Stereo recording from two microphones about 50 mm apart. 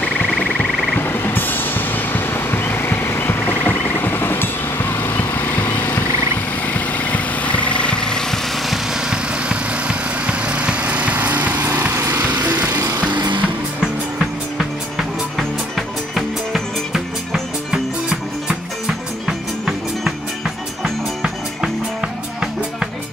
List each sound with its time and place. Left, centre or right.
0.3 s music: centre
0.9 s vehicle: left
6.7 s vehicle: left; by 8.4 s centre
9.1 s vehicle: right
16.2 s music: centre